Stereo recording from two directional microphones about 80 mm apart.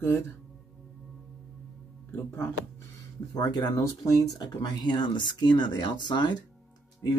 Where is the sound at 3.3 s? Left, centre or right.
Left.